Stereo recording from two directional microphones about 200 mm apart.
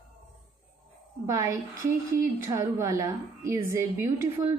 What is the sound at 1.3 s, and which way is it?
A woman's voice, 15° right (ahead or behind).